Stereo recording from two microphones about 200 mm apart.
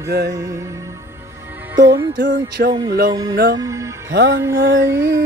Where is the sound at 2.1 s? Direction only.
65° right (ahead or behind).